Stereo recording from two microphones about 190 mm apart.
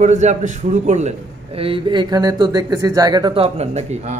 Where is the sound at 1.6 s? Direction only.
30° right (ahead or behind).